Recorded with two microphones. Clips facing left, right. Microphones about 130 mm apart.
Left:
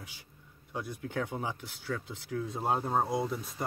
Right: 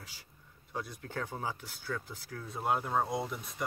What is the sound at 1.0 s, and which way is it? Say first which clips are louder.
Speech: left 4 dB; 15° left (ahead or behind).